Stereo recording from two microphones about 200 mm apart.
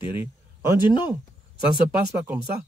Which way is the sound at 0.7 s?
20° left (ahead or behind).